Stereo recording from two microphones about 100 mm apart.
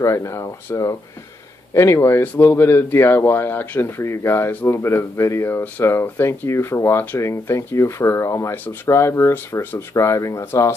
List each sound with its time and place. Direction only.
0.0 s speech: 35° left (ahead or behind)